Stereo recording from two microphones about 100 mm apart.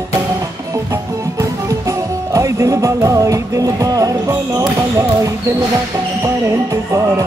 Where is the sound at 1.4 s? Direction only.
35° right (ahead or behind).